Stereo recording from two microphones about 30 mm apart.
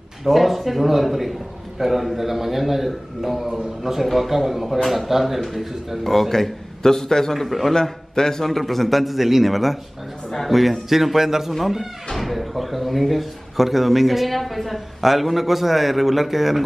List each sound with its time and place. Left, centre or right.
0.2 s a man's voice: centre
6.8 s a man's voice: centre
7.3 s speech: centre
7.7 s a man's voice: centre
8.5 s a man's voice: centre